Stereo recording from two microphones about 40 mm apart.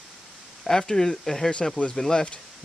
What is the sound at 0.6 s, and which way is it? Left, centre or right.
Speech, centre.